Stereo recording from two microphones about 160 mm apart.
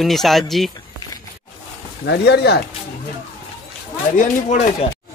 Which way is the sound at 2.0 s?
90° left.